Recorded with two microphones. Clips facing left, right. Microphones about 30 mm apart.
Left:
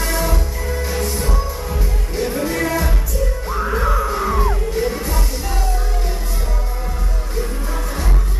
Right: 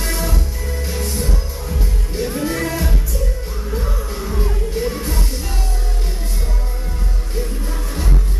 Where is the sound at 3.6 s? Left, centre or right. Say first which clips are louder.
Left 8 dB; left.